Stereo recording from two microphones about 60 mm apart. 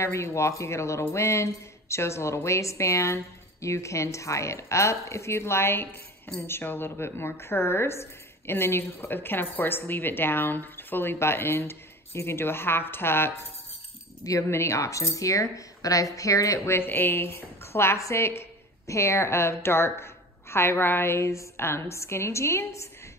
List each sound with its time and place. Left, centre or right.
0.0 s a woman's voice: left
14.5 s a woman's voice: left